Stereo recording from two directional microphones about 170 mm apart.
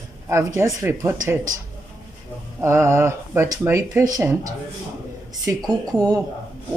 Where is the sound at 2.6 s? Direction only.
15° right (ahead or behind).